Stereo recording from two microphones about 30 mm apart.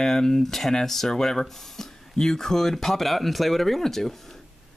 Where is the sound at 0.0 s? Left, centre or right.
Centre.